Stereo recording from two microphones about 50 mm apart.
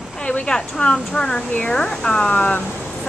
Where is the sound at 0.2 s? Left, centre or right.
Centre.